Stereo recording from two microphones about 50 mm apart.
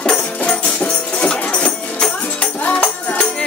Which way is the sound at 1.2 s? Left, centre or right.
Left.